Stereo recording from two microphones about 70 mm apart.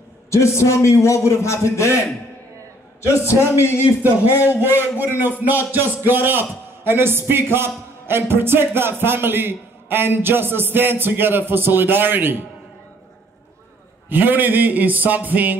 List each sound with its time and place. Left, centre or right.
0.3 s a man's voice: left
3.1 s a man's voice: left
4.5 s a man's voice: right
14.0 s a man's voice: right